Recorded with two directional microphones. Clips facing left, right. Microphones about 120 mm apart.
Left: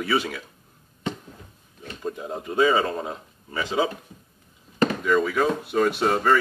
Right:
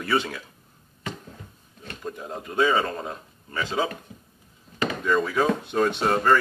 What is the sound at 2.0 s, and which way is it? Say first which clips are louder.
Speech: left 3 dB; 15° left (ahead or behind).